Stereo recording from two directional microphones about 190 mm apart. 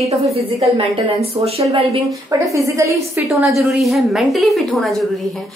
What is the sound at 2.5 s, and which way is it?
Speech, 15° right (ahead or behind).